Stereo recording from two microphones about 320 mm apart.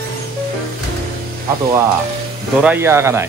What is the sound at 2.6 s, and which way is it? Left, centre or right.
Speech, centre.